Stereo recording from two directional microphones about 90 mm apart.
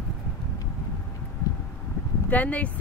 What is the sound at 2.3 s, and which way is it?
Speech, 15° left (ahead or behind).